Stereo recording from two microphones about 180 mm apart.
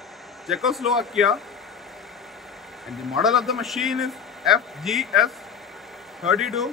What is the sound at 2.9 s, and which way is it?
A man's voice, centre (ahead or behind).